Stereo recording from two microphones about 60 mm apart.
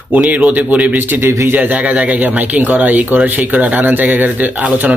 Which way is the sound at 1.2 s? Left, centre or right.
Right.